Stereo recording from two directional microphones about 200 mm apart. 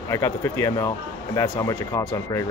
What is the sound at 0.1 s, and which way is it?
A man's voice, 15° left (ahead or behind).